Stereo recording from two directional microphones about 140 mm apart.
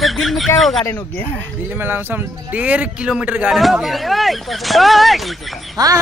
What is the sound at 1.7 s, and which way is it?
Speech, 15° right (ahead or behind).